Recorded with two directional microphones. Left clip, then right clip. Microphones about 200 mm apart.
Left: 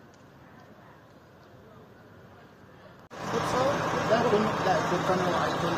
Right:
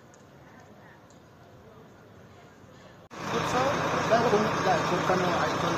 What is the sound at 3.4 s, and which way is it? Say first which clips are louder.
Vehicle: even; 65° left (ahead or behind).